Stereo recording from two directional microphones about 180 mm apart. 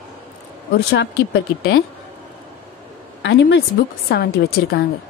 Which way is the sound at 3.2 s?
75° left (ahead or behind).